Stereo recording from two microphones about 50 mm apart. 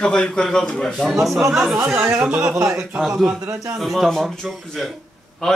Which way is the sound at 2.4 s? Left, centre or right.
Right.